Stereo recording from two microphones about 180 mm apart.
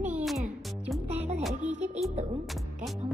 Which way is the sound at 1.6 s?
40° right (ahead or behind).